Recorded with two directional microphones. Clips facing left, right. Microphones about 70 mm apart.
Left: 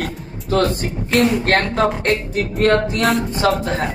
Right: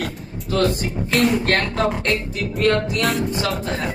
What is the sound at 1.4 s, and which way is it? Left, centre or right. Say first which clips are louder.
Speech: left 3 dB; left.